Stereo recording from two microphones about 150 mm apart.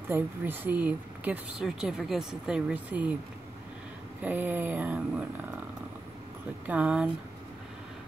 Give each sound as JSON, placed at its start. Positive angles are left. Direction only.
{"t": 0.1, "sound": "speech", "side_deg": -10}
{"t": 4.2, "sound": "speech", "side_deg": -10}
{"t": 6.7, "sound": "speech", "side_deg": -10}